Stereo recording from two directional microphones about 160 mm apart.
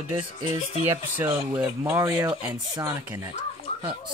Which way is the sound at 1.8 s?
20° right (ahead or behind).